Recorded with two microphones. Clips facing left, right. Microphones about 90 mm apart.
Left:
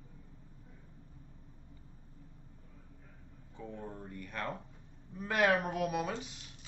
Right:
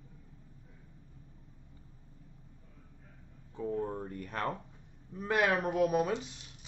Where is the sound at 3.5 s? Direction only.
40° right (ahead or behind).